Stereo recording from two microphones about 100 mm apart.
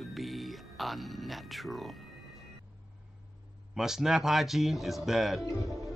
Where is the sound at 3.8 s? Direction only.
5° right (ahead or behind).